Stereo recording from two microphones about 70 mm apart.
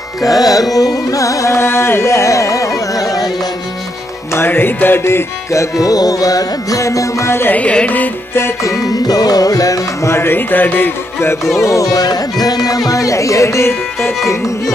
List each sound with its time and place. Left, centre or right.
0.2 s music: left
0.7 s carnatic music: left
4.5 s music: left
5.5 s music: left
7.5 s music: centre
8.9 s music: left
10.1 s music: left
11.6 s music: left